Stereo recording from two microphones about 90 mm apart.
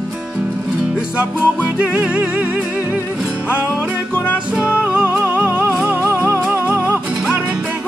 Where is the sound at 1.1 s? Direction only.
15° right (ahead or behind).